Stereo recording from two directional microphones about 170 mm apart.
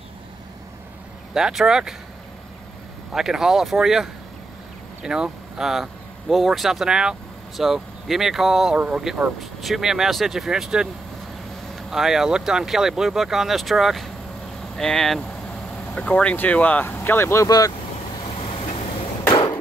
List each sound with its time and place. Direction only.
1.3 s speech: centre (ahead or behind)
3.1 s speech: 5° right (ahead or behind); by 17.7 s 20° left (ahead or behind)
18.2 s vehicle: 35° left (ahead or behind)
19.2 s a sound: 30° left (ahead or behind)